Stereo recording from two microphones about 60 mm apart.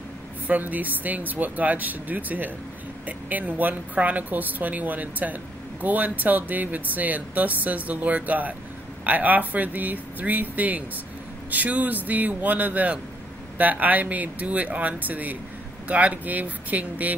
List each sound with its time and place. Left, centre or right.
0.5 s speech: right